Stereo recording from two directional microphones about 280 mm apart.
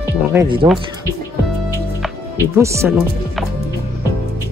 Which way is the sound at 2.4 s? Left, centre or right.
Centre.